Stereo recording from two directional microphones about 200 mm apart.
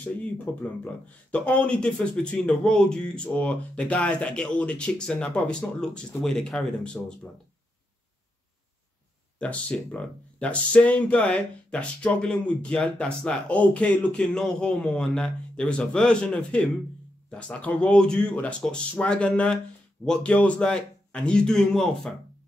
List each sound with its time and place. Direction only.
0.0 s speech: 5° left (ahead or behind)
9.4 s speech: 5° left (ahead or behind)